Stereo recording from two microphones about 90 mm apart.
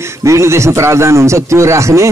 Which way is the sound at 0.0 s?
35° right (ahead or behind).